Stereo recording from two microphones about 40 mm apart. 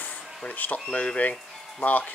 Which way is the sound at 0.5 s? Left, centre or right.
Left.